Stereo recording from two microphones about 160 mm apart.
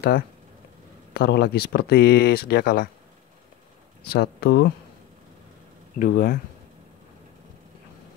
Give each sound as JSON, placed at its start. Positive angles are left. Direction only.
{"t": 1.1, "sound": "speech", "side_deg": 85}
{"t": 4.0, "sound": "speech", "side_deg": 80}
{"t": 5.9, "sound": "speech", "side_deg": 65}